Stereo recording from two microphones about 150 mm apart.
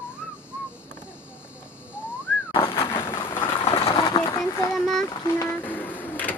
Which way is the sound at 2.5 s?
35° left (ahead or behind).